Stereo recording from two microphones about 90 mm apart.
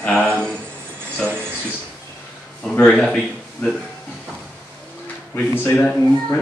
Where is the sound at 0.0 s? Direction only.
10° left (ahead or behind).